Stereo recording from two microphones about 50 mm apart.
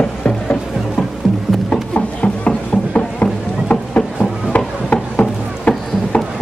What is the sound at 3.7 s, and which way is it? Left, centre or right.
Chop, left.